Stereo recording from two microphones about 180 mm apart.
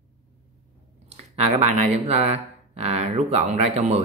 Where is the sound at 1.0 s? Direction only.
35° right (ahead or behind).